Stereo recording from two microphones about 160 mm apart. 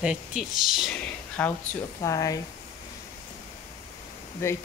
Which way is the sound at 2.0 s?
20° left (ahead or behind).